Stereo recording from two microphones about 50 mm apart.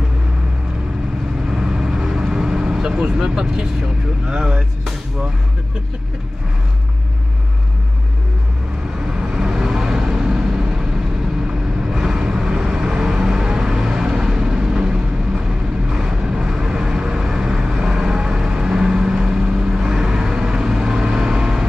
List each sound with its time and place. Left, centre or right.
1.5 s vehicle: centre
4.3 s speech: centre
9.0 s vehicle: centre
11.9 s vehicle: centre